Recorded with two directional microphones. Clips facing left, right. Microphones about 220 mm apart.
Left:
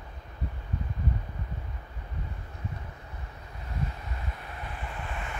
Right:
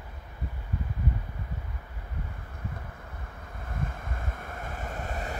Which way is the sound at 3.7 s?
50° right (ahead or behind).